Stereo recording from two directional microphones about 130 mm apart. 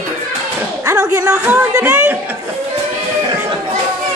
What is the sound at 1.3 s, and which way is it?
Speech, 15° right (ahead or behind).